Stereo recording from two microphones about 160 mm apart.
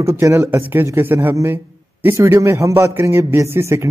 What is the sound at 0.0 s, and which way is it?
Speech, 15° right (ahead or behind).